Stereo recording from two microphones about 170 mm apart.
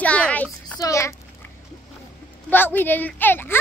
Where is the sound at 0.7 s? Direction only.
20° left (ahead or behind).